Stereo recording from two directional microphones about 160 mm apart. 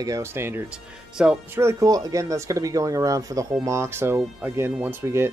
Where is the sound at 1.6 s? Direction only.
20° right (ahead or behind).